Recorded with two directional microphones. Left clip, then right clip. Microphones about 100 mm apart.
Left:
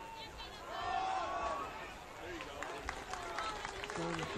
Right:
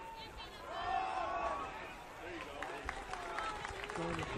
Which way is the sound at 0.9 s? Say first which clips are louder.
Left 1 dB; 35° right (ahead or behind).